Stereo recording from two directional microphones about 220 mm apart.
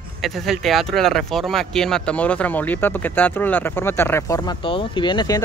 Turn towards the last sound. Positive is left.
turn(degrees=20)  # may be behind; listen again after turning